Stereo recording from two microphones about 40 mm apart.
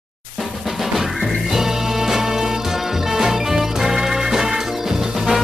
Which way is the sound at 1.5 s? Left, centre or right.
Centre.